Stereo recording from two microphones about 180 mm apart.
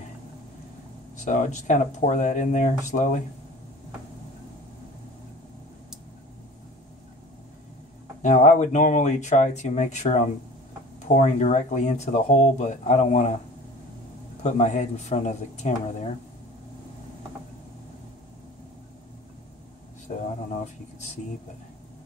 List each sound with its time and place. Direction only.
1.1 s speech: 45° left (ahead or behind)
8.2 s speech: 45° left (ahead or behind)
14.4 s speech: 40° left (ahead or behind)